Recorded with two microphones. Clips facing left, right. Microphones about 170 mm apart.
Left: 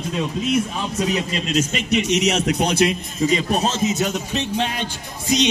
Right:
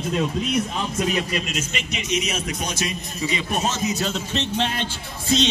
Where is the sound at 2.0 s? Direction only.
70° left (ahead or behind).